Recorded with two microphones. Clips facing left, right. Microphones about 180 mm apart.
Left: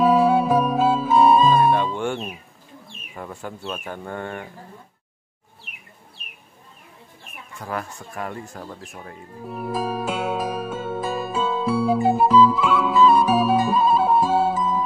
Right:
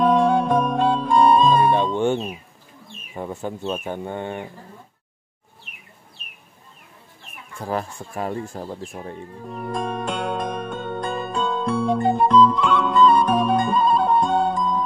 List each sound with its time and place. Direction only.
0.0 s music: 5° left (ahead or behind)
2.0 s music: 20° right (ahead or behind)
3.2 s speech: 20° right (ahead or behind)
7.5 s speech: 30° right (ahead or behind)
9.4 s music: 5° left (ahead or behind)